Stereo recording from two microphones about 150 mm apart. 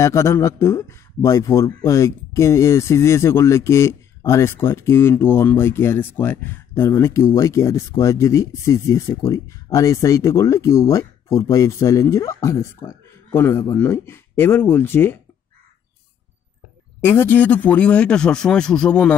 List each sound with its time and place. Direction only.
0.0 s speech: 20° left (ahead or behind)
17.0 s speech: 15° left (ahead or behind)